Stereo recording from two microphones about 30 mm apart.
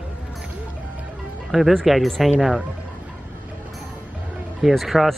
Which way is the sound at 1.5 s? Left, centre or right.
Centre.